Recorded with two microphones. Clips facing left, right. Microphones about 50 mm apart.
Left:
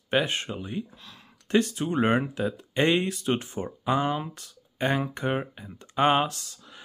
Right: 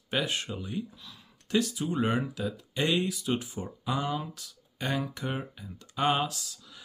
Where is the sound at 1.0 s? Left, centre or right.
Left.